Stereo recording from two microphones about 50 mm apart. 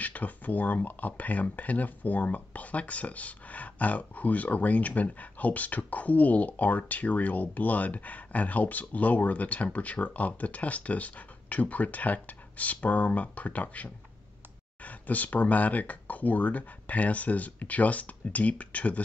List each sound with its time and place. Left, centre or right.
0.0 s speech: left
14.9 s speech: left